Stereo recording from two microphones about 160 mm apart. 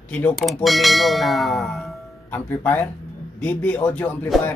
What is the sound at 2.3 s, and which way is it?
Speech, 10° left (ahead or behind).